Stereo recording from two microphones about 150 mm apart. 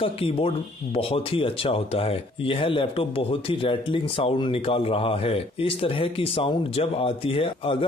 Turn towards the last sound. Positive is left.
turn(degrees=35)  # may be behind; listen again after turning